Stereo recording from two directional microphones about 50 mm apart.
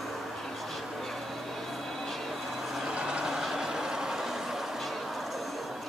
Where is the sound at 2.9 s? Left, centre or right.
Centre.